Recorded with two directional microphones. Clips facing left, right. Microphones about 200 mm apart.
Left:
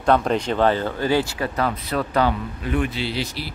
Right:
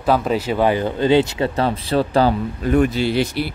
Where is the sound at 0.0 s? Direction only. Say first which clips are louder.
Right 1 dB; 5° right (ahead or behind).